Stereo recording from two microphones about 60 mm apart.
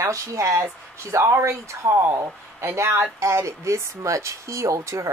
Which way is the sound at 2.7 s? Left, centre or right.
Right.